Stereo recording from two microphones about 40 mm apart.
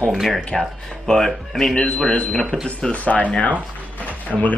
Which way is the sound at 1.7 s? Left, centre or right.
Left.